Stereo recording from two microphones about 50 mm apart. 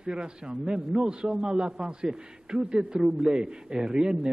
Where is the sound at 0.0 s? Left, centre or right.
Centre.